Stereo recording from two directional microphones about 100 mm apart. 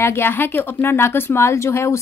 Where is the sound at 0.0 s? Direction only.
25° left (ahead or behind).